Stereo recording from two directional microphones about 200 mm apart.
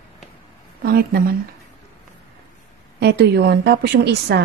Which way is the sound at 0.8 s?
50° right (ahead or behind).